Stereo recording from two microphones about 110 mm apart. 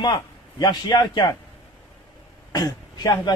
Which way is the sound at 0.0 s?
40° left (ahead or behind).